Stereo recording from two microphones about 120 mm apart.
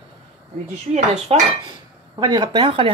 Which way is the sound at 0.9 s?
70° right (ahead or behind).